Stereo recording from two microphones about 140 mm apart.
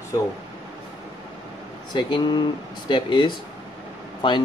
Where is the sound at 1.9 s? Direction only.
35° left (ahead or behind).